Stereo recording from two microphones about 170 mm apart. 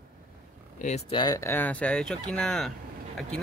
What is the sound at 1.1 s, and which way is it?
Speech, 20° left (ahead or behind).